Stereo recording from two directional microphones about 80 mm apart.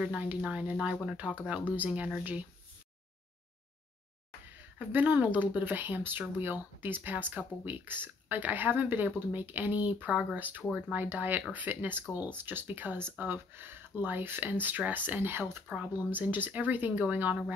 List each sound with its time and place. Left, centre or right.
0.0 s speech: centre
4.7 s speech: centre